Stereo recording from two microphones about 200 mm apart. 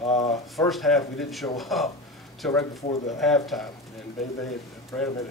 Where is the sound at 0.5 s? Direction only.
Centre (ahead or behind).